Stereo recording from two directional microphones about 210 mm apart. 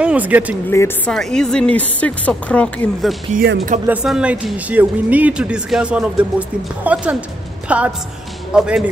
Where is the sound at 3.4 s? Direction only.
40° right (ahead or behind).